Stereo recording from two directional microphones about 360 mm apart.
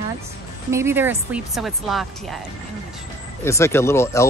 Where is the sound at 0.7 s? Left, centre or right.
Centre.